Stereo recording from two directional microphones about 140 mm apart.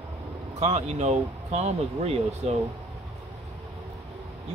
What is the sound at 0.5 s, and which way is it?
Speech, 55° right (ahead or behind).